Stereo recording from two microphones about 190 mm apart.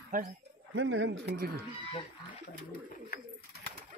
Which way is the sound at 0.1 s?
45° right (ahead or behind).